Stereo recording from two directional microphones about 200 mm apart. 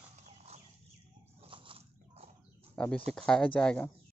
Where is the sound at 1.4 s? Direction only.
25° right (ahead or behind).